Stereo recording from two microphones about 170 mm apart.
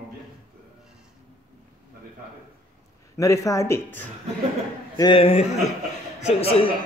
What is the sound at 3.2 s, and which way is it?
Speech, 20° left (ahead or behind).